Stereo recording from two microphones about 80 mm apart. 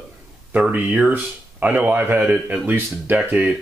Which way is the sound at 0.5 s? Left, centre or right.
Right.